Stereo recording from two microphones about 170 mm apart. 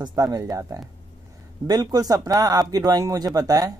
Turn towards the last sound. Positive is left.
turn(degrees=-20)  # may be behind; listen again after turning